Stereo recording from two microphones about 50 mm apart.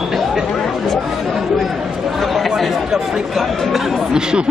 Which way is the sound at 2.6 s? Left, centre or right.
Centre.